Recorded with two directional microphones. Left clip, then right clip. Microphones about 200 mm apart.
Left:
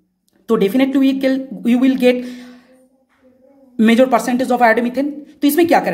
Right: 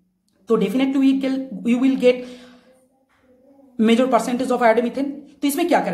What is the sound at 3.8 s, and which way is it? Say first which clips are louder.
A woman's voice: left 4 dB; 35° left (ahead or behind).